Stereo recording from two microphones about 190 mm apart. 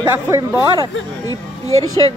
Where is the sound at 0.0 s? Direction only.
20° right (ahead or behind).